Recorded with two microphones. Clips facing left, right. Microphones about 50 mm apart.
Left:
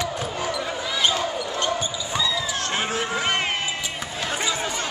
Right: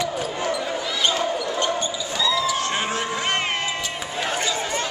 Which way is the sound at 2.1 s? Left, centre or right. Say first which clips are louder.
Right 4 dB; centre.